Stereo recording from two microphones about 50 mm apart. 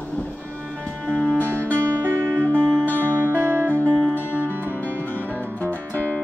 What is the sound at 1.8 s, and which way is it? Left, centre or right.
Music, right.